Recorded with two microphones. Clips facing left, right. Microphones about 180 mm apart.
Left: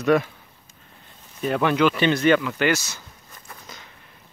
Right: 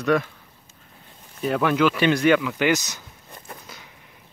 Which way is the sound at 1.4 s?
Centre (ahead or behind).